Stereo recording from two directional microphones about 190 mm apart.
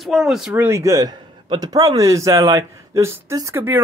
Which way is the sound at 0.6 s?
15° right (ahead or behind).